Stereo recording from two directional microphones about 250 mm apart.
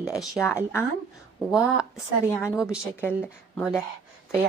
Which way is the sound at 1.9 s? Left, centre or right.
Centre.